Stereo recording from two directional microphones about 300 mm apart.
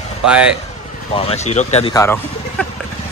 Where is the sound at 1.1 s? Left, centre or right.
Centre.